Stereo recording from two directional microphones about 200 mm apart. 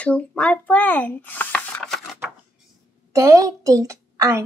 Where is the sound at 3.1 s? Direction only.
15° right (ahead or behind).